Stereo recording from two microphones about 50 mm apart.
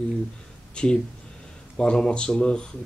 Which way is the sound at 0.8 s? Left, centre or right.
Centre.